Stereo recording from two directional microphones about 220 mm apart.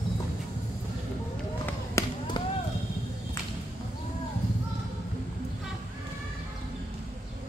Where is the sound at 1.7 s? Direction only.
15° left (ahead or behind).